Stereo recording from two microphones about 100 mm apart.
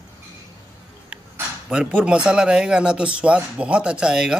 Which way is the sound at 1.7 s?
10° right (ahead or behind).